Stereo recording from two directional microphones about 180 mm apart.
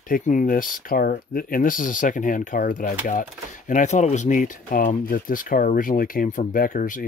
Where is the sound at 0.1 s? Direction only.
50° left (ahead or behind).